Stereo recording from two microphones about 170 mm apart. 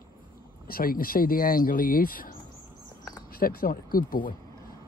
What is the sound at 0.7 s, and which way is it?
Speech, 60° left (ahead or behind).